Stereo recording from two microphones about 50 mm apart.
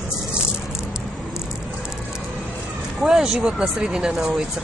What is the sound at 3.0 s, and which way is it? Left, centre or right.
Speech, centre.